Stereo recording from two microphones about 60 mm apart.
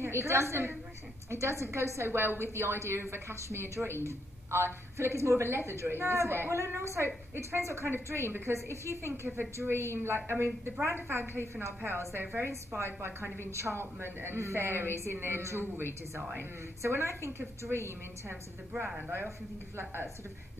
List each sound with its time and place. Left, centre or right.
0.0 s a woman's voice: right
19.8 s a woman's voice: right